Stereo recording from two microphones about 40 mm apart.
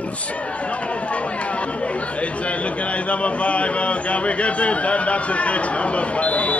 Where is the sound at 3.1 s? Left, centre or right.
Left.